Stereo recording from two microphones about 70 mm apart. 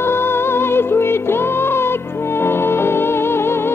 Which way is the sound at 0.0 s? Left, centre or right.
Left.